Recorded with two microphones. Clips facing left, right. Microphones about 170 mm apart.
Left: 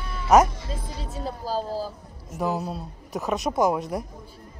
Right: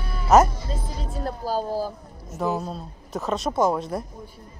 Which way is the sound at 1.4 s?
10° right (ahead or behind).